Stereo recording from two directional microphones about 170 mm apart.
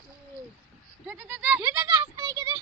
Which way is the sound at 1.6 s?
20° right (ahead or behind).